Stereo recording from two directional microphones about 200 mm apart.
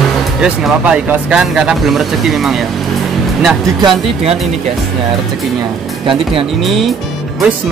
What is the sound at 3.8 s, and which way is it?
Speech, 30° right (ahead or behind).